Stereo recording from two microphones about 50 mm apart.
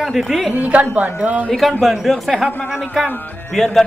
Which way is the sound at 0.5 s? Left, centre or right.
Right.